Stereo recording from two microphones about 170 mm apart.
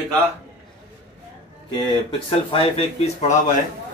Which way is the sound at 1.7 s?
30° left (ahead or behind).